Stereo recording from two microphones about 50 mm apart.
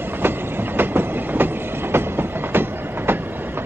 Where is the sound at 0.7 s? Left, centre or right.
Right.